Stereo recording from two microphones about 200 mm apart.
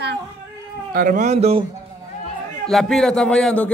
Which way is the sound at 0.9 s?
45° right (ahead or behind).